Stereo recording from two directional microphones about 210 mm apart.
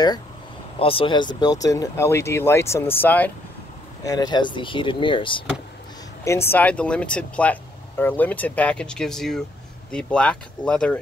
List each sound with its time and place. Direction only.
0.7 s speech: 25° left (ahead or behind)
6.5 s speech: 5° left (ahead or behind)